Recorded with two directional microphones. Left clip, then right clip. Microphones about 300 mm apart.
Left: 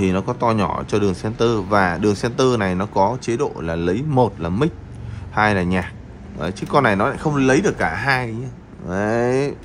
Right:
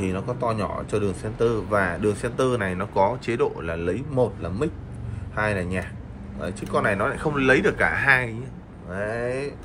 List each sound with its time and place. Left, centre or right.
0.0 s speech: centre